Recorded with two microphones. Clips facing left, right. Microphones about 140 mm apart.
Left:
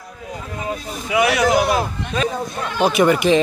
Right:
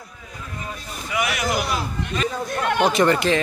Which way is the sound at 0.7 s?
85° left.